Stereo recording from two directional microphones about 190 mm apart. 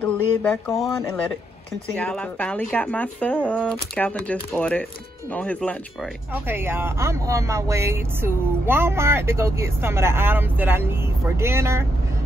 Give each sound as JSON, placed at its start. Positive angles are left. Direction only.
{"t": 0.0, "sound": "speech", "side_deg": 10}
{"t": 2.0, "sound": "speech", "side_deg": 5}
{"t": 6.3, "sound": "speech", "side_deg": -10}